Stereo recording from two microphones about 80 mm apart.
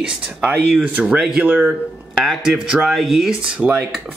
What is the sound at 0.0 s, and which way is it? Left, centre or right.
Speech, centre.